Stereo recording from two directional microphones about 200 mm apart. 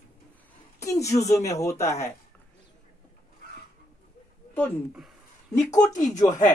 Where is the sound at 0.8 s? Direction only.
15° left (ahead or behind).